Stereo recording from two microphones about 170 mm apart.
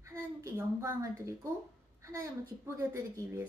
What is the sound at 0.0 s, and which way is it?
A child's voice, 15° right (ahead or behind).